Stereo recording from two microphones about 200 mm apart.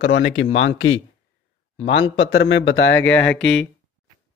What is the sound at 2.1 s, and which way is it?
Speech, 55° left (ahead or behind).